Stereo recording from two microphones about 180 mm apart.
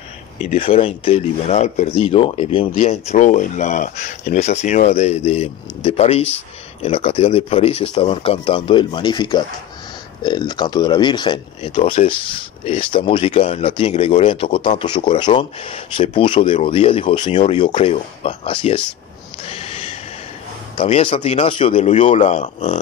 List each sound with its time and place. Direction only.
0.6 s speech: 30° left (ahead or behind)
19.4 s a sound: 35° left (ahead or behind)
20.7 s speech: 30° left (ahead or behind)